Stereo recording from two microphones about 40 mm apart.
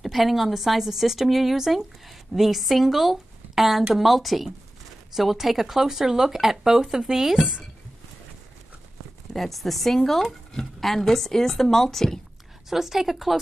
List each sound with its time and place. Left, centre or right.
0.0 s a woman's voice: centre
9.3 s speech: centre
12.6 s speech: centre